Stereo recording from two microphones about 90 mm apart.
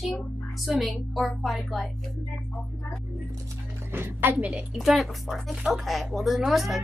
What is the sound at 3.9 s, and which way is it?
Music, 25° right (ahead or behind).